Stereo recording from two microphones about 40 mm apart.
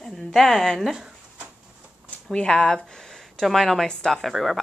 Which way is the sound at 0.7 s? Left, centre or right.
Centre.